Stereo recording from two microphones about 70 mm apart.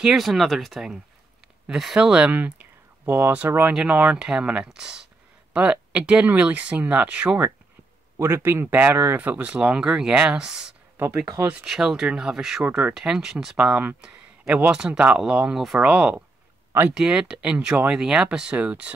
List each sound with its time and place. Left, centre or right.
0.0 s speech: centre
2.0 s speech: centre
3.9 s speech: centre
8.4 s speech: right; by 10.8 s centre
11.0 s speech: right
11.6 s speech: centre
12.6 s speech: right
12.9 s speech: centre
13.6 s speech: centre
15.9 s speech: centre